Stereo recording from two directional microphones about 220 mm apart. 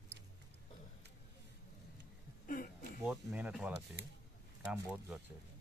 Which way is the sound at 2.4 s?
40° left (ahead or behind).